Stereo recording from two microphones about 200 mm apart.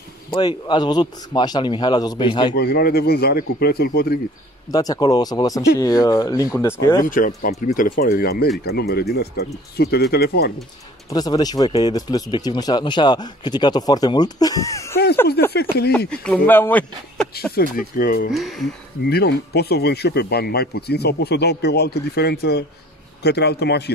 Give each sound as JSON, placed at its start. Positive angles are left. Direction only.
{"t": 0.3, "sound": "speech", "side_deg": 20}
{"t": 2.5, "sound": "speech", "side_deg": 55}
{"t": 4.6, "sound": "speech", "side_deg": 20}
{"t": 7.1, "sound": "speech", "side_deg": 40}
{"t": 11.1, "sound": "speech", "side_deg": 20}
{"t": 15.4, "sound": "a sound", "side_deg": 50}
{"t": 16.1, "sound": "speech", "side_deg": 5}
{"t": 17.3, "sound": "speech", "side_deg": 45}
{"t": 18.3, "sound": "speech", "side_deg": 0}
{"t": 19.0, "sound": "a man's voice", "side_deg": 55}